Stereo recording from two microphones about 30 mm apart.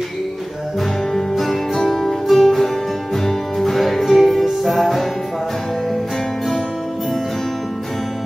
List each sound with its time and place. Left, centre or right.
1.4 s music: centre